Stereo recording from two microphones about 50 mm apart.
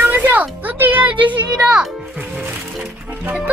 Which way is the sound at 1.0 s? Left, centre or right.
Right.